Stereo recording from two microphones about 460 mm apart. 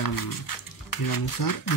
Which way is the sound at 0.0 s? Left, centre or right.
Left.